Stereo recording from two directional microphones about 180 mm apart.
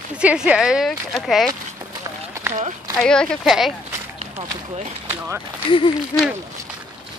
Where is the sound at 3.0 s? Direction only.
Centre (ahead or behind).